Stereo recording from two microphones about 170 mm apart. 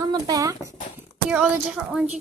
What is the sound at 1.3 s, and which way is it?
Speech, 5° right (ahead or behind).